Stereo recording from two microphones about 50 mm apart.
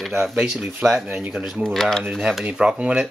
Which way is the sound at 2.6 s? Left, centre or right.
Right.